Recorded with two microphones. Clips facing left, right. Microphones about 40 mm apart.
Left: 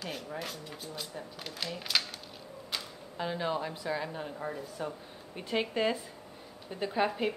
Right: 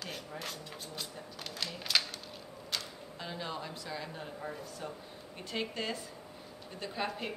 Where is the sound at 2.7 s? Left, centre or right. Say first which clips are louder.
Even; centre.